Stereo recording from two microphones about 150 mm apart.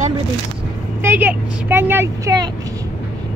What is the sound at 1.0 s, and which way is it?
Speech, 15° right (ahead or behind).